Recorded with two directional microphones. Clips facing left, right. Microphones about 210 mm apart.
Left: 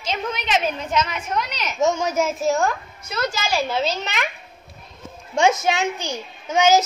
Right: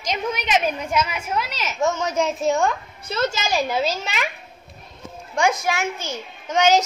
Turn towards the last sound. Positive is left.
turn(degrees=10)  # may be behind; listen again after turning